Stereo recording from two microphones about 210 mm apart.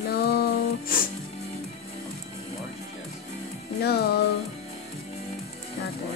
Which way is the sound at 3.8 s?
50° left (ahead or behind).